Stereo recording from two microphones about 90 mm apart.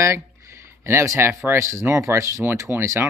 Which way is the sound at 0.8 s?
30° right (ahead or behind).